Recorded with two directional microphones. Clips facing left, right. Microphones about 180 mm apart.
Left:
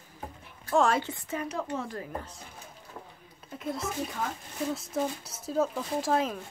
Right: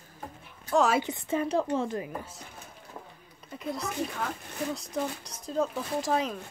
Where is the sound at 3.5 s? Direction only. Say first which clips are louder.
Even; centre (ahead or behind).